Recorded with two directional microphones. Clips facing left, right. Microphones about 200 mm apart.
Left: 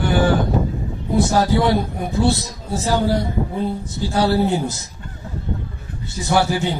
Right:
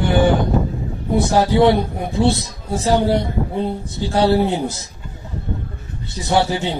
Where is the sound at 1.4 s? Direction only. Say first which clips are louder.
Right 3 dB; 20° right (ahead or behind).